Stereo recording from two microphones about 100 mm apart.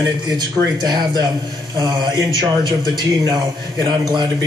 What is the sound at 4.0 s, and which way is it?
Speech, 50° right (ahead or behind).